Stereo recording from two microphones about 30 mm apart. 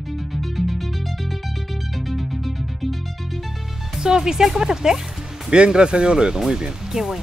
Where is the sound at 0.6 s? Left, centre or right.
Centre.